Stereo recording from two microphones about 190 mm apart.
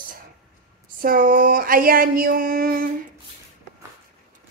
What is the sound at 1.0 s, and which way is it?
A woman's voice, 45° right (ahead or behind).